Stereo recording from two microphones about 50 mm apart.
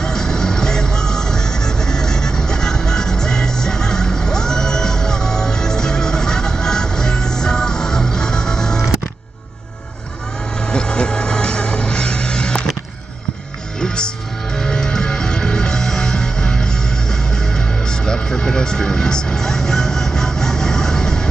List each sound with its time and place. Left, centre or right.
0.0 s music: centre
10.7 s music: centre
13.7 s music: centre